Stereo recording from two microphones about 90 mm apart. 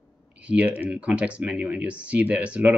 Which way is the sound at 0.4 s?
15° right (ahead or behind).